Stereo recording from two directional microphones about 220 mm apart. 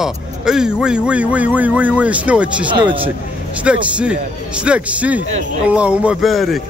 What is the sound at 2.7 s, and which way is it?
Speech, 20° right (ahead or behind).